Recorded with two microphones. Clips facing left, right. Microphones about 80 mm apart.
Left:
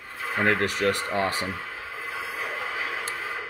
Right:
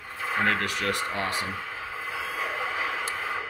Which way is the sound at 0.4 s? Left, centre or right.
Left.